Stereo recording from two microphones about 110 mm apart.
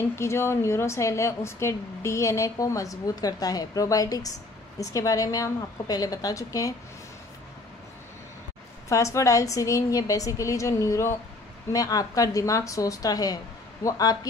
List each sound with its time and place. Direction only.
0.1 s a woman's voice: 25° left (ahead or behind)
8.8 s a woman's voice: 30° left (ahead or behind)